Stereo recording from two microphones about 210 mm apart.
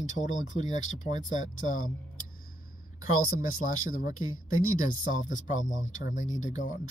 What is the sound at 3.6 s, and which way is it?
Speech, 40° left (ahead or behind).